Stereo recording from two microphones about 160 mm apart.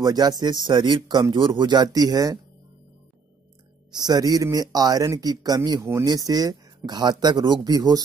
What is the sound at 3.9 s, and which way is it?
Speech, 25° right (ahead or behind).